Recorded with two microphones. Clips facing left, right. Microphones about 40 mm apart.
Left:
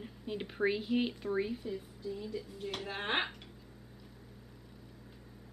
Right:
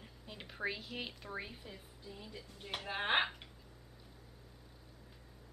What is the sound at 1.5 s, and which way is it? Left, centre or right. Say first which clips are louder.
A woman's voice: left 12 dB; centre.